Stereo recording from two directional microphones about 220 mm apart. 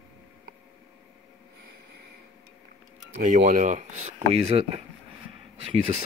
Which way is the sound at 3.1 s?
35° right (ahead or behind).